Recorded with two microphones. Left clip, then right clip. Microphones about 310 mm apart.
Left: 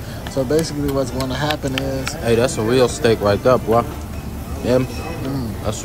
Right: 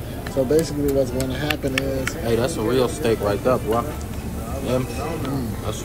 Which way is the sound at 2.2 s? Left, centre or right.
Left.